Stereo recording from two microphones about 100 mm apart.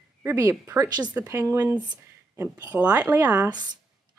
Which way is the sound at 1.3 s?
25° right (ahead or behind).